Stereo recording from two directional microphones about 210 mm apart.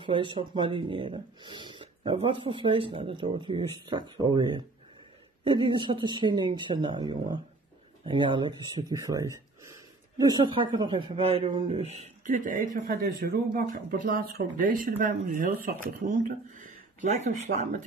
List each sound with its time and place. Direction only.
0.0 s speech: 25° right (ahead or behind)